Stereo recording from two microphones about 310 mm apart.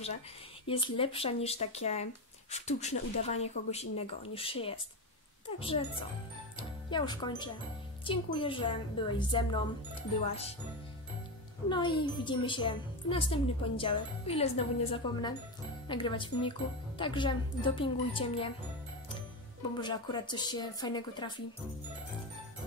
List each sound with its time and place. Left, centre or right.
0.7 s a woman's voice: centre
6.9 s a woman's voice: centre
11.7 s a woman's voice: centre
19.8 s a woman's voice: centre